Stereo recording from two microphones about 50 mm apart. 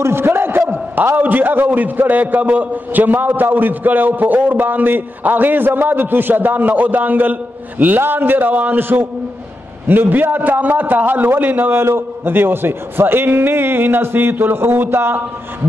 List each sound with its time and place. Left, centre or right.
0.0 s a man's voice: right